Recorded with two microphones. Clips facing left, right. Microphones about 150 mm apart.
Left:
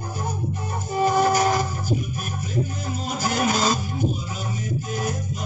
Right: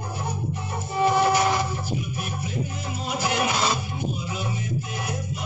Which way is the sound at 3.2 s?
40° left (ahead or behind).